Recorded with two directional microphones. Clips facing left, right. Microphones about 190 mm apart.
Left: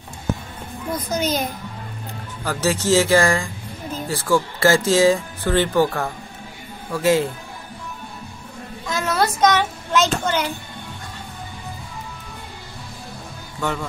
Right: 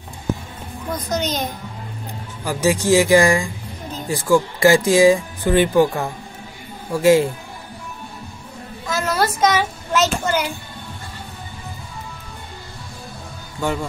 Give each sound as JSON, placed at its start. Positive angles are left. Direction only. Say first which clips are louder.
{"t": 0.9, "sound": "a child's voice", "louder": "left 1 dB", "side_deg": 10}
{"t": 2.4, "sound": "speech", "louder": "right 3 dB", "side_deg": -15}
{"t": 8.8, "sound": "speech", "louder": "right 1 dB", "side_deg": 0}
{"t": 13.6, "sound": "speech", "louder": "right 2 dB", "side_deg": -20}